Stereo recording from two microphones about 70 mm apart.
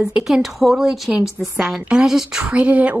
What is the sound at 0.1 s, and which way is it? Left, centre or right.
A woman's voice, centre.